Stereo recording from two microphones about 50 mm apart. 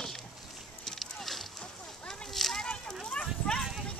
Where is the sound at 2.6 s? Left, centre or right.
Centre.